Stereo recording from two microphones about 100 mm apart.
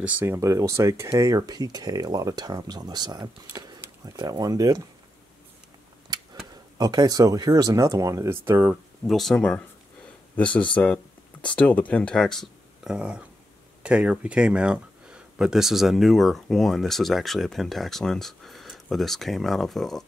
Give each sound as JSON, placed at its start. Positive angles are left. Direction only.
{"t": 0.0, "sound": "speech", "side_deg": -20}
{"t": 6.1, "sound": "a sound", "side_deg": -45}
{"t": 6.8, "sound": "speech", "side_deg": -40}
{"t": 9.0, "sound": "speech", "side_deg": 0}
{"t": 12.8, "sound": "speech", "side_deg": -10}